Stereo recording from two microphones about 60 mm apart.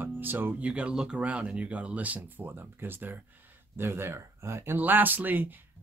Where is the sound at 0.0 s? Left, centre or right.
Right.